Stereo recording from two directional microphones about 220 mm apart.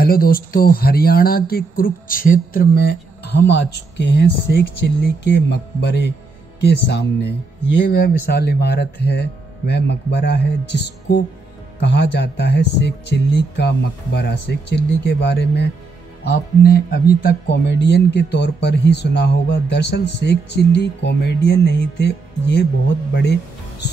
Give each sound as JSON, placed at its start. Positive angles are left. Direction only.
{"t": 0.0, "sound": "speech", "side_deg": 40}